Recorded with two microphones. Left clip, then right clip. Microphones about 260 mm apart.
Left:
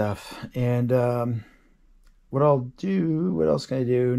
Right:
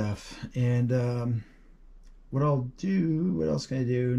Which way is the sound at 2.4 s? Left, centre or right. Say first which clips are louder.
Left 8 dB; centre.